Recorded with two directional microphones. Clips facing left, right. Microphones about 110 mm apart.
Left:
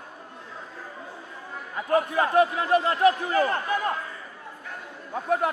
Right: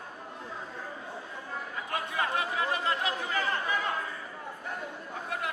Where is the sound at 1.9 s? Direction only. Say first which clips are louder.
Left 11 dB; 40° left (ahead or behind).